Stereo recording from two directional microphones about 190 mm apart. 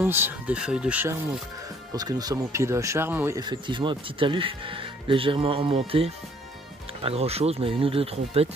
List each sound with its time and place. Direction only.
0.0 s speech: 10° right (ahead or behind)
2.0 s speech: 20° right (ahead or behind)